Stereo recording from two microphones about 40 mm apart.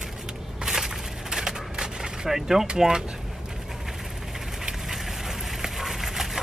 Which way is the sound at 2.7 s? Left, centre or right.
Centre.